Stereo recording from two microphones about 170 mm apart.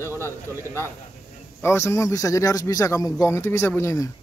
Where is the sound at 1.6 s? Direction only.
15° left (ahead or behind).